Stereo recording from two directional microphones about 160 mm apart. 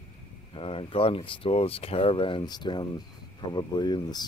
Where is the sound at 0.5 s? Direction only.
35° left (ahead or behind).